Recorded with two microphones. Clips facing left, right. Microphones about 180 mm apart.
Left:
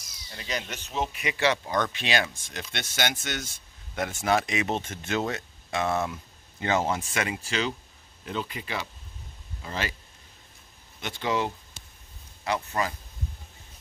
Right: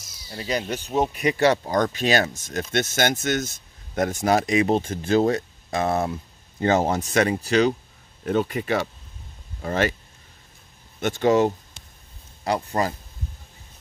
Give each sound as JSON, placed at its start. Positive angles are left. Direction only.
{"t": 0.3, "sound": "speech", "side_deg": -35}
{"t": 11.0, "sound": "speech", "side_deg": -45}